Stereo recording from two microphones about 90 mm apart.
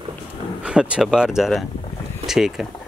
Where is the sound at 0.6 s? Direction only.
10° right (ahead or behind).